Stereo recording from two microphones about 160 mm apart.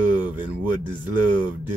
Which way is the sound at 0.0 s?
10° right (ahead or behind).